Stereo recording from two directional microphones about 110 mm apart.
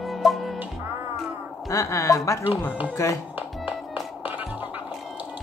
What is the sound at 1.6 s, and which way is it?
Speech, 30° left (ahead or behind).